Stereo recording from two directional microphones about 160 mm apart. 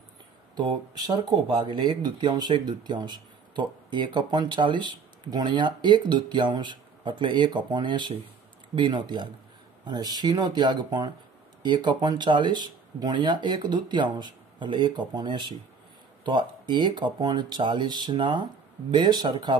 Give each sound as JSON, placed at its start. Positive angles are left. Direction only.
{"t": 0.6, "sound": "speech", "side_deg": -30}